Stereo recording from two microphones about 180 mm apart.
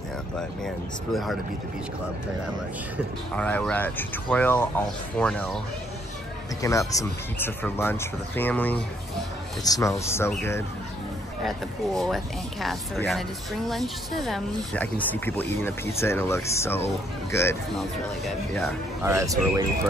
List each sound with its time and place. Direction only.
1.1 s speech: centre (ahead or behind)
3.3 s speech: 10° left (ahead or behind)
6.6 s speech: 15° left (ahead or behind)
11.4 s speech: centre (ahead or behind)
17.7 s speech: centre (ahead or behind)
19.0 s speech: 15° right (ahead or behind)